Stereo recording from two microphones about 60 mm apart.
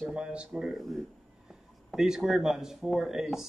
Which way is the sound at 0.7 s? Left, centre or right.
Centre.